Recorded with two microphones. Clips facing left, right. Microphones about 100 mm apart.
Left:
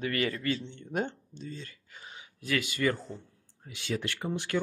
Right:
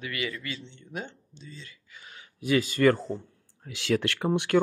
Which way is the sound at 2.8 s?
60° right (ahead or behind).